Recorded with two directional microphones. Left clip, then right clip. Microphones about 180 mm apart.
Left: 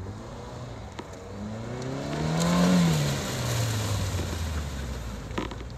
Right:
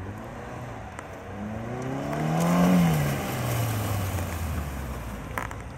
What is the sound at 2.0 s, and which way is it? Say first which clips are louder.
Vehicle: right 2 dB; 30° left (ahead or behind).